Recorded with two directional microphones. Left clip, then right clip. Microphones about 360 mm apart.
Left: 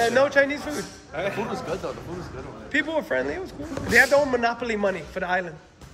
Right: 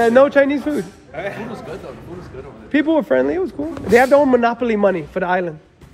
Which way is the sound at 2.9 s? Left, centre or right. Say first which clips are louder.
Right 9 dB; centre.